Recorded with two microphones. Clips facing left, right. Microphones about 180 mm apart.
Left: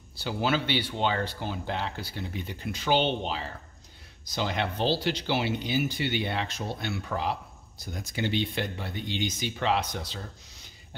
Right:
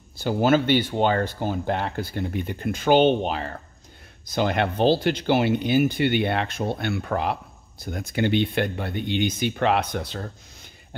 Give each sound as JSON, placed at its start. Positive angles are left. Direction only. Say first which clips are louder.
{"t": 0.2, "sound": "speech", "louder": "right 8 dB", "side_deg": -50}